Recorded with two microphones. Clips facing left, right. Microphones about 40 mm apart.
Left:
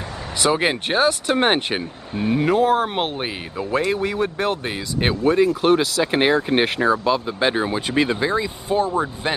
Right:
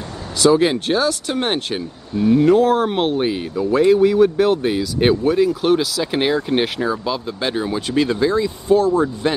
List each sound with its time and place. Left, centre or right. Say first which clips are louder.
0.4 s speech: right 5 dB; left
2.3 s speech: right 3 dB; centre